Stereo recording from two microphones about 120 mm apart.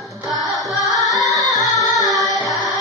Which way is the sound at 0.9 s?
Centre (ahead or behind).